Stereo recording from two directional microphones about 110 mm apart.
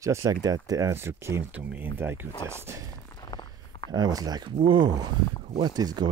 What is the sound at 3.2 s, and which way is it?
Walk, 35° left (ahead or behind).